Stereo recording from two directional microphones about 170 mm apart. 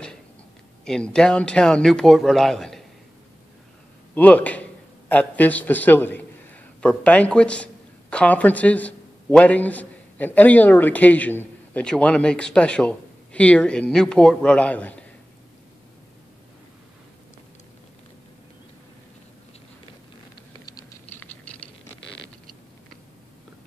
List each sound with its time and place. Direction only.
0.8 s speech: 5° left (ahead or behind)
4.1 s a man's voice: 10° left (ahead or behind)
20.6 s typing: 20° left (ahead or behind)
21.1 s rattle: 10° left (ahead or behind)